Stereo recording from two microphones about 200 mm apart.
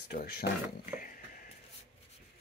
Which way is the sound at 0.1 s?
50° left (ahead or behind).